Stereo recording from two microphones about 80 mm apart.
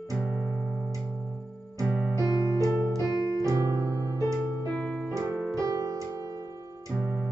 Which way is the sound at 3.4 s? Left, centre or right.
Right.